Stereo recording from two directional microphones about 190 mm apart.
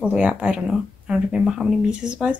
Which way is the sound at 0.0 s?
5° right (ahead or behind).